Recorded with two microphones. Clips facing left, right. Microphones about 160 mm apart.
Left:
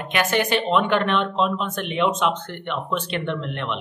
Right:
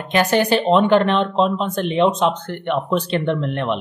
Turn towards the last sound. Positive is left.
turn(degrees=-40)  # may be behind; listen again after turning